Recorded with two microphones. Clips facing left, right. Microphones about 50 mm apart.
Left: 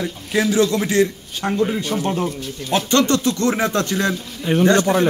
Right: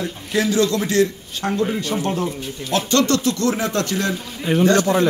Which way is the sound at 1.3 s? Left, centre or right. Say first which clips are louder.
Left 1 dB; centre.